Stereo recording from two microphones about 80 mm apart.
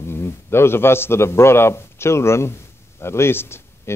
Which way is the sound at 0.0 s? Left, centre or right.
Left.